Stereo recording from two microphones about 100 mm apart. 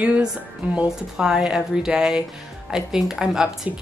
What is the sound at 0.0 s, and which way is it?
A woman's voice, 10° right (ahead or behind).